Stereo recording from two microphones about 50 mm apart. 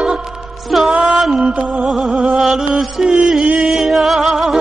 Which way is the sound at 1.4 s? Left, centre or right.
Right.